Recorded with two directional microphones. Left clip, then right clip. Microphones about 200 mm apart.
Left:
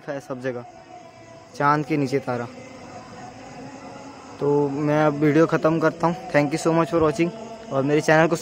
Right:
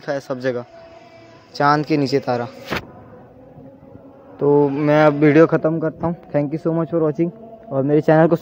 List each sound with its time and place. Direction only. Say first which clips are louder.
0.0 s speech: right 7 dB; 20° right (ahead or behind)
4.4 s speech: right 6 dB; 15° right (ahead or behind)
5.7 s a man's voice: left 1 dB; centre (ahead or behind)
6.5 s speech: even; 10° right (ahead or behind)
7.9 s speech: right 4 dB; 20° right (ahead or behind)